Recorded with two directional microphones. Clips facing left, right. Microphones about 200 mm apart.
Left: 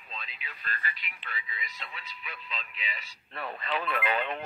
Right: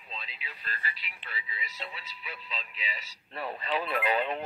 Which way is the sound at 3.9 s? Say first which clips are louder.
Right 2 dB; 35° right (ahead or behind).